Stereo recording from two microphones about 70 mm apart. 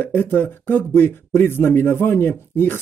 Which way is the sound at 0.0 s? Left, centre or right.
Left.